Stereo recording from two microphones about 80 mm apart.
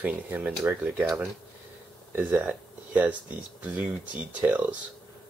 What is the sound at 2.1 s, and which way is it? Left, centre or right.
Speech, right.